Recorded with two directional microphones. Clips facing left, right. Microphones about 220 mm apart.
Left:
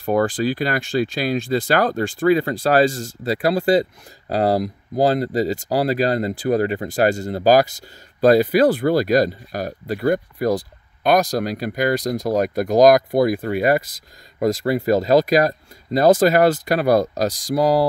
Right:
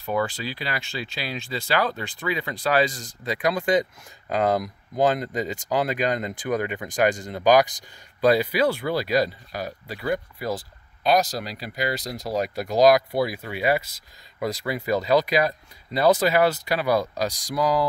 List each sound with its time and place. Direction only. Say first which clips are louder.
0.0 s speech: left 8 dB; 50° left (ahead or behind)